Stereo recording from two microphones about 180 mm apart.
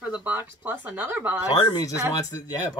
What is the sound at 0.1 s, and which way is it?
Speech, 10° right (ahead or behind).